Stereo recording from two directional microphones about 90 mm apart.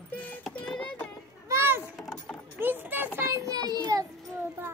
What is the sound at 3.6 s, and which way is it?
Children playing, 50° right (ahead or behind).